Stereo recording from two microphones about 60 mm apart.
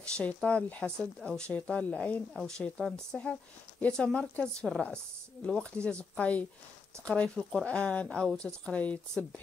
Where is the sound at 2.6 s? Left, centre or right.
Centre.